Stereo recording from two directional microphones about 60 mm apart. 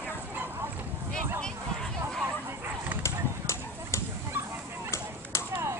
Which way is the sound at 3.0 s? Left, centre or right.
Left.